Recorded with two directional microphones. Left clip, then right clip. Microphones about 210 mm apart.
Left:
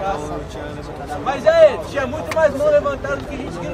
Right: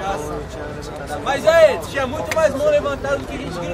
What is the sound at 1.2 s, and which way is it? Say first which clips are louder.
Speech: left 1 dB; 5° left (ahead or behind).